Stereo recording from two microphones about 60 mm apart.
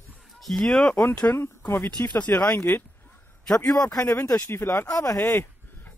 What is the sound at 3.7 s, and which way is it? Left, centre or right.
Speech, left.